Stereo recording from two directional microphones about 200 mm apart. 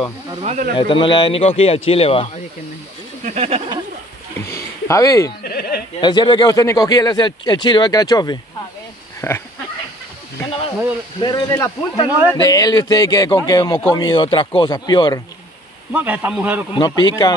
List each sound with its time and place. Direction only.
0.4 s speech: 35° right (ahead or behind)
0.7 s speech: 25° left (ahead or behind)
3.3 s a sound: 30° right (ahead or behind)
4.5 s speech: 15° left (ahead or behind)
5.4 s a sound: 50° left (ahead or behind)
5.9 s speech: 20° left (ahead or behind)
9.2 s pig: 10° left (ahead or behind)
11.1 s speech: 20° left (ahead or behind)
12.1 s a man's voice: 10° right (ahead or behind)
12.4 s speech: 20° left (ahead or behind)
15.9 s a man's voice: 10° right (ahead or behind)
16.7 s speech: 20° left (ahead or behind)